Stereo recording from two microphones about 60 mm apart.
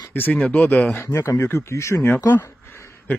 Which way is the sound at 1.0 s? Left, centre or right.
Left.